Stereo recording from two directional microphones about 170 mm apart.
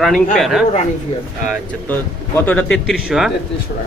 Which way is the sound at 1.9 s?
10° left (ahead or behind).